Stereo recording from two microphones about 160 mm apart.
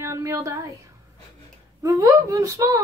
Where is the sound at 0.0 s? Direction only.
20° right (ahead or behind).